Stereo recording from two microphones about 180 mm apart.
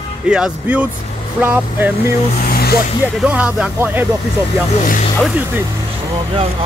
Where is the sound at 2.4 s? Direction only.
60° left (ahead or behind).